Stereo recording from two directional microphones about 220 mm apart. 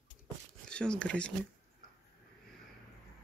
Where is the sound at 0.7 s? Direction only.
5° left (ahead or behind).